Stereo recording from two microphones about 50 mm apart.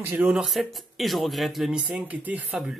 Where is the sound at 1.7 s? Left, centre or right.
Right.